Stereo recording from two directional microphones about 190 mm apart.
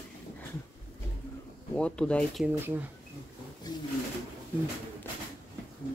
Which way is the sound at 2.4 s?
10° right (ahead or behind).